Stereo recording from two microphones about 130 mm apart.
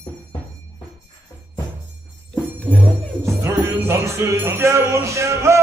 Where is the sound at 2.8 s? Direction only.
20° right (ahead or behind).